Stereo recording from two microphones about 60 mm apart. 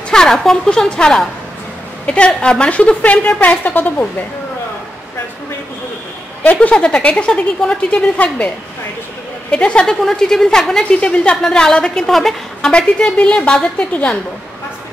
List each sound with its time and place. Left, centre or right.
0.1 s a woman's voice: centre; by 4.1 s left
6.4 s speech: left
9.5 s a woman's voice: centre
11.0 s a woman's voice: centre
12.7 s a woman's voice: centre